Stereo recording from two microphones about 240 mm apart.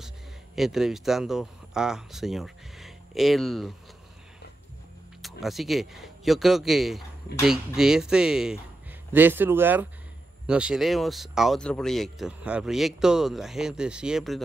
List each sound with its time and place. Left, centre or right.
0.6 s speech: centre
5.2 s speech: centre